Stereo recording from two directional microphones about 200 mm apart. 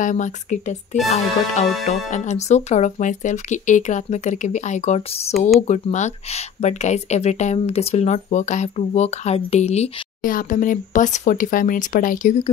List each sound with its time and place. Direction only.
0.0 s speech: 40° left (ahead or behind)